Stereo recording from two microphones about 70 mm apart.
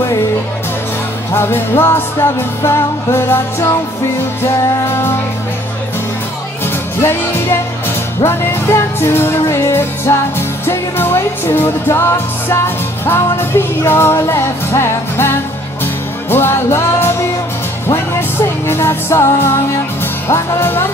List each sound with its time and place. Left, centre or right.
1.3 s music: left
7.0 s music: left